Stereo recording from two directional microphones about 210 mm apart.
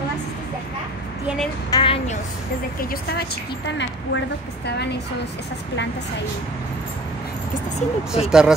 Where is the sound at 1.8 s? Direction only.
25° left (ahead or behind).